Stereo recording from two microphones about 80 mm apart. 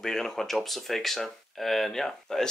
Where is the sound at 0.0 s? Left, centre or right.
Centre.